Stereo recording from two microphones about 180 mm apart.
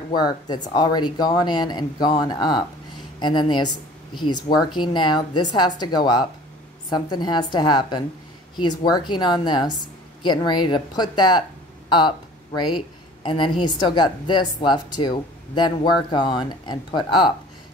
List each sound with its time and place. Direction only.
0.1 s a woman's voice: 25° left (ahead or behind)
12.5 s a woman's voice: 25° left (ahead or behind)